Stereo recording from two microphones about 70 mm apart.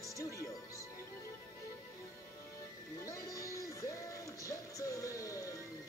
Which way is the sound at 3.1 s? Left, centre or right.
Left.